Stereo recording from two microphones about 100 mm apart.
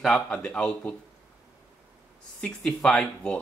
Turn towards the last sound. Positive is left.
turn(degrees=10)  # may be behind; listen again after turning